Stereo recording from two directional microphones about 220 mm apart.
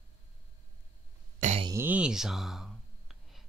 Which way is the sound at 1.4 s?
30° right (ahead or behind).